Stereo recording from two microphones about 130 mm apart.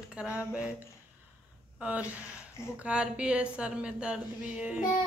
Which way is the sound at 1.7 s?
10° right (ahead or behind).